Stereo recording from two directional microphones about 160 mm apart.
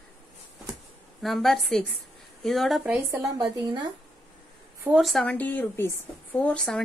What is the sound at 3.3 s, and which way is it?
Speech, 25° right (ahead or behind).